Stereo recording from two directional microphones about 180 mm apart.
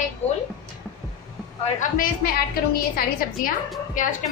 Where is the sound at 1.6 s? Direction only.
45° left (ahead or behind).